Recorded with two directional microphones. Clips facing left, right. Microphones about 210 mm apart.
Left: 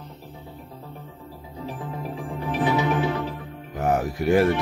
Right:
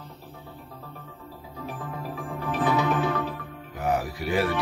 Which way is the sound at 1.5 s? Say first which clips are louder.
Left 3 dB; 15° left (ahead or behind).